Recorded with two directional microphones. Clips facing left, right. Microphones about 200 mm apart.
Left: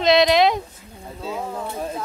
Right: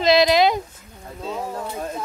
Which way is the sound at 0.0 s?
Centre (ahead or behind).